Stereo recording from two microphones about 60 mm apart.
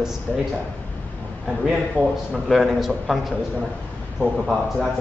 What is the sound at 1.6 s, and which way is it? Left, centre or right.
Speech, centre.